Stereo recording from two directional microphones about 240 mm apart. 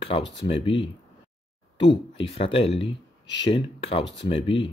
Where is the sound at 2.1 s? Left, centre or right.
Left.